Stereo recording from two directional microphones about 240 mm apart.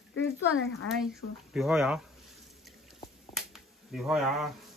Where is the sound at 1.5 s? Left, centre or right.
Centre.